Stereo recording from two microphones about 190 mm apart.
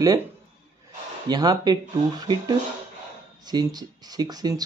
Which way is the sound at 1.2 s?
20° right (ahead or behind).